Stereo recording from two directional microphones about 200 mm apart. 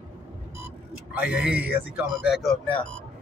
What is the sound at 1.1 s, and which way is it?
A man's voice, 5° right (ahead or behind).